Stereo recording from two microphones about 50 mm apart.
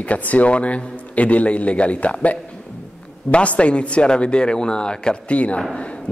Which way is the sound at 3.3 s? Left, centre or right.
Left.